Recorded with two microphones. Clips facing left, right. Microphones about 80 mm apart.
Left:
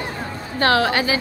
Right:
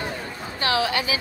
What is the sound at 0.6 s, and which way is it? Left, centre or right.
Speech, left.